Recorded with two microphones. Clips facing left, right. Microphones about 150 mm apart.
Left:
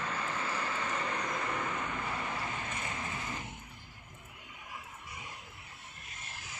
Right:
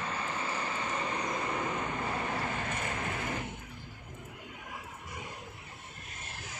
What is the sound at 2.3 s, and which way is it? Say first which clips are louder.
Vehicle: right 4 dB; 45° right (ahead or behind).